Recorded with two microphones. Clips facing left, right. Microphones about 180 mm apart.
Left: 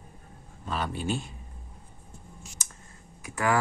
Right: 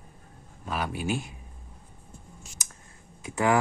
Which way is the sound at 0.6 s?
10° right (ahead or behind).